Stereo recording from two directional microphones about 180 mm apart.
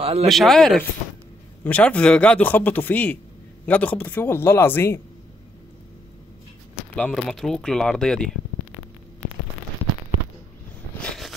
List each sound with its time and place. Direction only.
0.0 s speech: 35° right (ahead or behind)
0.3 s a man's voice: centre (ahead or behind)
7.0 s speech: 5° left (ahead or behind)
11.0 s a sound: 5° left (ahead or behind)